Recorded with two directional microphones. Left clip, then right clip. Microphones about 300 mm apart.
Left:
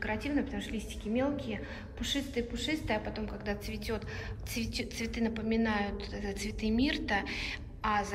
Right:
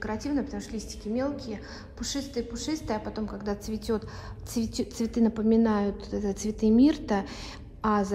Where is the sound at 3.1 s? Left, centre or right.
Centre.